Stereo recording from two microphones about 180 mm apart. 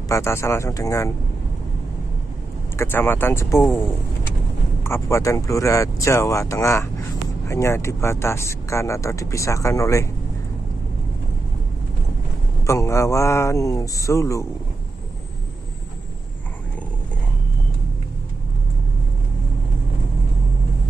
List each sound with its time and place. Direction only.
0.1 s speech: 15° left (ahead or behind)
2.8 s speech: 10° left (ahead or behind)
12.6 s speech: 15° left (ahead or behind)